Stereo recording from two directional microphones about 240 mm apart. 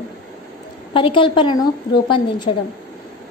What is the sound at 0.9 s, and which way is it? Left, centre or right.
A woman's voice, left.